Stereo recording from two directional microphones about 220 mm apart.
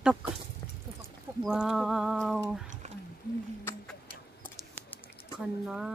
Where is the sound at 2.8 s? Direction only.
30° right (ahead or behind).